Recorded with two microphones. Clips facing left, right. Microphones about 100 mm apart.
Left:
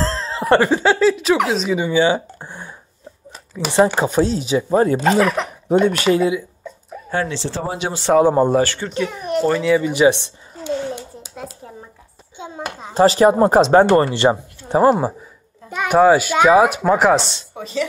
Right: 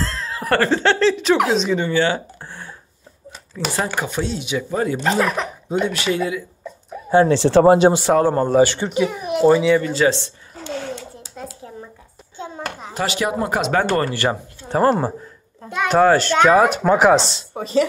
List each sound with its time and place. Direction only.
0.0 s speech: 30° left (ahead or behind); by 2.7 s 15° left (ahead or behind)
3.7 s speech: 25° left (ahead or behind)
4.1 s speech: 40° left (ahead or behind)
5.0 s speech: centre (ahead or behind)
5.9 s speech: 45° left (ahead or behind)
6.1 s speech: 25° left (ahead or behind)
6.6 s a sound: centre (ahead or behind)
7.2 s speech: 60° right (ahead or behind)
8.2 s speech: 10° left (ahead or behind)
8.6 s speech: 15° right (ahead or behind)
9.8 s a sound: 15° left (ahead or behind)
12.4 s speech: 15° left (ahead or behind)
12.9 s speech: 35° left (ahead or behind); by 17.2 s centre (ahead or behind)
17.6 s speech: 35° right (ahead or behind)